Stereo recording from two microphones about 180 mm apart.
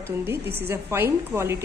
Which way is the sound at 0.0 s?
15° right (ahead or behind).